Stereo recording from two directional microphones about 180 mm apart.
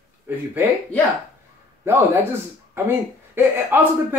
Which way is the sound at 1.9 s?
10° right (ahead or behind).